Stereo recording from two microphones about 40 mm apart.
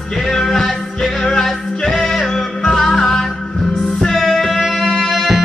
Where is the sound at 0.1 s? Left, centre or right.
Centre.